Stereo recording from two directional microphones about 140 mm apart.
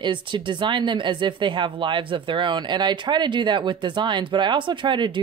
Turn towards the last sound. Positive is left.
turn(degrees=-35)  # may be behind; listen again after turning